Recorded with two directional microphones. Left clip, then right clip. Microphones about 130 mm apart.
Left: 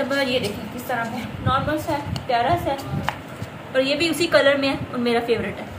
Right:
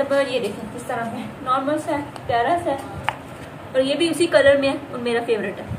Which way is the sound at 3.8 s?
15° right (ahead or behind).